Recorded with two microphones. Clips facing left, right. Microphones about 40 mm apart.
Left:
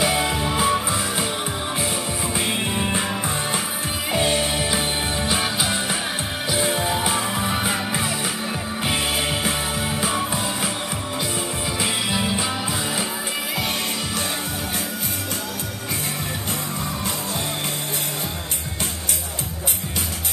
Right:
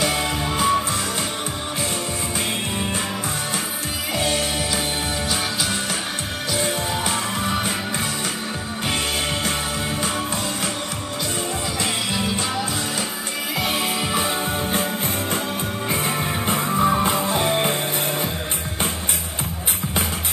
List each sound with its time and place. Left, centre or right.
0.0 s music: centre
2.3 s music: centre
4.1 s music: centre
10.0 s music: centre
11.8 s music: centre
16.4 s music: right